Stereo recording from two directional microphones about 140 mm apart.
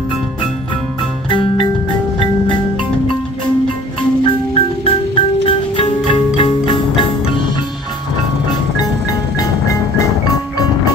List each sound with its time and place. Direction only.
1.3 s music: 40° left (ahead or behind)
2.1 s marimba: 40° left (ahead or behind)
4.2 s music: 40° left (ahead or behind)